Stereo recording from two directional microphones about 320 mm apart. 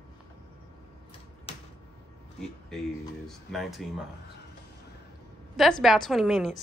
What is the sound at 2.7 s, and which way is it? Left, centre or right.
A woman's voice, centre.